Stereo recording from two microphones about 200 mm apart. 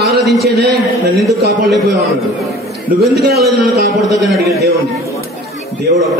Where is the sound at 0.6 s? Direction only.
55° right (ahead or behind).